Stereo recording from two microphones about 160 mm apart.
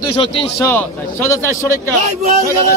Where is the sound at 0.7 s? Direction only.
15° left (ahead or behind).